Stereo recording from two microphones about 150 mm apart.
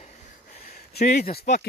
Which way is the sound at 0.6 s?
70° left (ahead or behind).